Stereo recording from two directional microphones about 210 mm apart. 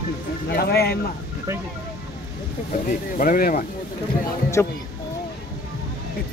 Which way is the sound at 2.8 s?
45° left (ahead or behind).